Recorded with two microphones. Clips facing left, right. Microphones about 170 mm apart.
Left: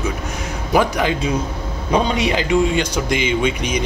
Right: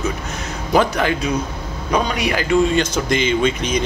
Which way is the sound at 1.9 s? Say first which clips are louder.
Left 2 dB; 25° left (ahead or behind).